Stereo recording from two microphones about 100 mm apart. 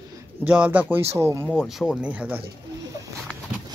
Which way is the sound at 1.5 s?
5° right (ahead or behind).